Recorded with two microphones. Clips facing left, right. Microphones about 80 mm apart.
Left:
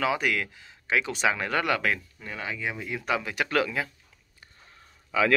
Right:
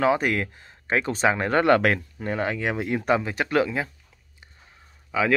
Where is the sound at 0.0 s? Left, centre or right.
Right.